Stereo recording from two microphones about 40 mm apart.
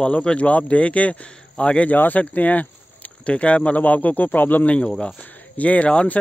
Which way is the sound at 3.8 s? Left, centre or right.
Left.